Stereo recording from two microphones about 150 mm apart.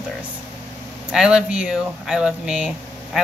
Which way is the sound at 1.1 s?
5° right (ahead or behind).